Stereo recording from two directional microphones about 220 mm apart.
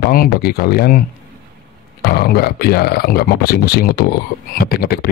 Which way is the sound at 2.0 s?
45° left (ahead or behind).